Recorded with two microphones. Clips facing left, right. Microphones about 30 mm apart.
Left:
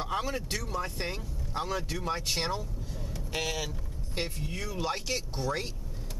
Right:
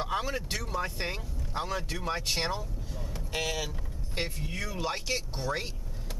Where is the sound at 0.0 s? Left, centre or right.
Centre.